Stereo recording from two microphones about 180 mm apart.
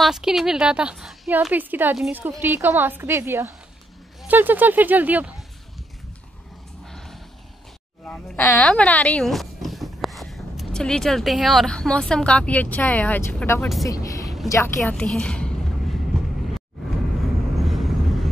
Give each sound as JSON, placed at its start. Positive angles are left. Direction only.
{"t": 0.0, "sound": "a woman's voice", "side_deg": 0}
{"t": 6.9, "sound": "vehicle", "side_deg": 5}
{"t": 8.1, "sound": "speech", "side_deg": 10}
{"t": 13.8, "sound": "a sound", "side_deg": 20}
{"t": 14.5, "sound": "a woman's voice", "side_deg": 15}
{"t": 17.6, "sound": "vehicle", "side_deg": 0}